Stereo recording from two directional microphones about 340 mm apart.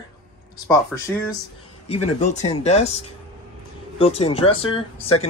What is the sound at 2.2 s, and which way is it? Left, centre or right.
Speech, centre.